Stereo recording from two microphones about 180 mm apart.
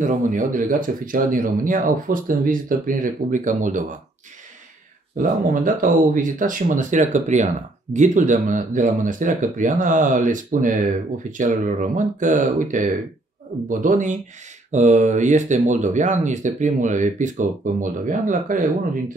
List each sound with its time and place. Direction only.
0.0 s speech: 45° right (ahead or behind)
5.1 s speech: 50° right (ahead or behind)